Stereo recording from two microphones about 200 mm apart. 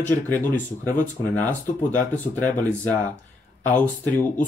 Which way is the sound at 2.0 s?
10° left (ahead or behind).